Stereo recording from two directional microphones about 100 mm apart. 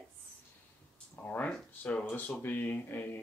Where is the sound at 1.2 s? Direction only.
15° left (ahead or behind).